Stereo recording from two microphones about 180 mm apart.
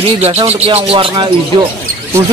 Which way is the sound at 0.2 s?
35° right (ahead or behind).